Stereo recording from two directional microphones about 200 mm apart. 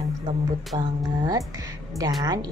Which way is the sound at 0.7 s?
25° right (ahead or behind).